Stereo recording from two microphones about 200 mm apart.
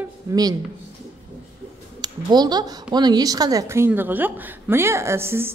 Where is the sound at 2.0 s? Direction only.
20° right (ahead or behind).